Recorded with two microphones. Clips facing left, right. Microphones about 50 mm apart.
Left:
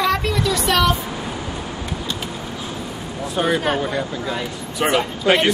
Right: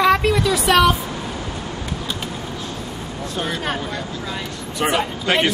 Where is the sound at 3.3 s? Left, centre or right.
Centre.